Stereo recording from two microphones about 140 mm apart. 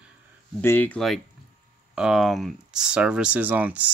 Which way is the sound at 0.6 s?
15° left (ahead or behind).